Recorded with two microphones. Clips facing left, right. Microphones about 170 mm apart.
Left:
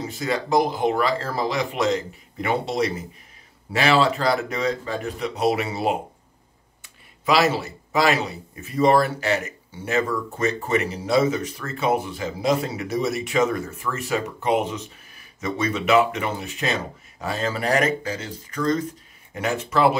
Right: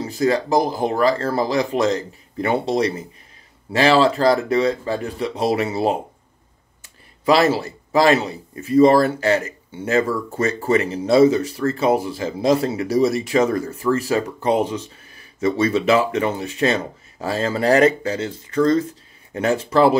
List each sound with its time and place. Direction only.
0.1 s speech: 35° right (ahead or behind)
7.9 s a man's voice: 35° right (ahead or behind)
10.7 s speech: 35° right (ahead or behind)